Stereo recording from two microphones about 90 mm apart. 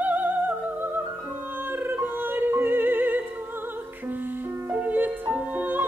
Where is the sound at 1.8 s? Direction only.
25° right (ahead or behind).